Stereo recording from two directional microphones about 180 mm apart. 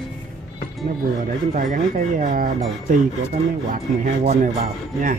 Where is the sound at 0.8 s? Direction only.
45° right (ahead or behind).